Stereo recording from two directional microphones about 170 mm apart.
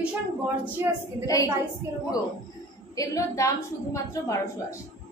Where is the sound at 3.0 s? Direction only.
20° left (ahead or behind).